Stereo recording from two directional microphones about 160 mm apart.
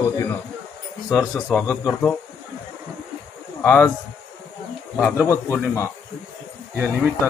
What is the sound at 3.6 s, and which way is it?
Speech, 15° left (ahead or behind).